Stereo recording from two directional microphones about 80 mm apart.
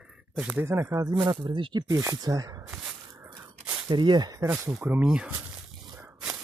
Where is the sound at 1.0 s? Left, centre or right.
Right.